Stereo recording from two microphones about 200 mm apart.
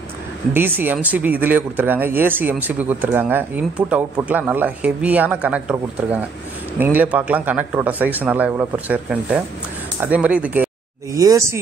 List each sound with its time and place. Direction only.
0.5 s speech: 10° right (ahead or behind)